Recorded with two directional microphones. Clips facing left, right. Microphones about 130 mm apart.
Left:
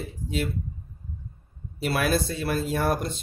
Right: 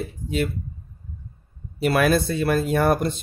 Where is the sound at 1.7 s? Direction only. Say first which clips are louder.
Right 5 dB; 60° right (ahead or behind).